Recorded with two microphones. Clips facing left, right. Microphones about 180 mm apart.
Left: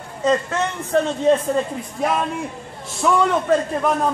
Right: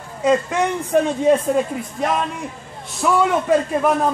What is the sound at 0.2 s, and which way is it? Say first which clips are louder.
A man's voice: right 2 dB; 10° right (ahead or behind).